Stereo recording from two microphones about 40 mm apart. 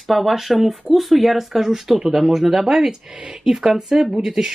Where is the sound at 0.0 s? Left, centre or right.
Centre.